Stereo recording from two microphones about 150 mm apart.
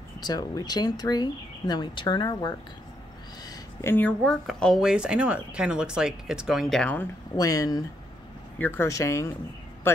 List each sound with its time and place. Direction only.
0.2 s speech: 25° left (ahead or behind)
3.4 s speech: 15° left (ahead or behind)
7.3 s speech: 25° left (ahead or behind)